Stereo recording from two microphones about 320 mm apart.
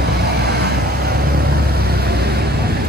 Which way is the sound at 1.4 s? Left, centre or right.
Right.